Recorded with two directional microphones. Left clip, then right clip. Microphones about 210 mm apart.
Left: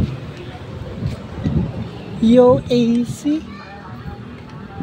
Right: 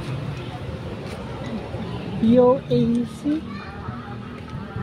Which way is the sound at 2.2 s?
25° left (ahead or behind).